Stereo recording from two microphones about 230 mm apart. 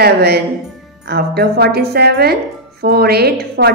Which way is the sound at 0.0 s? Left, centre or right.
Right.